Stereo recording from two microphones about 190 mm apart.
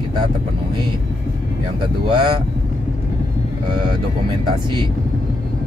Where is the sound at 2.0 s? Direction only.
25° right (ahead or behind).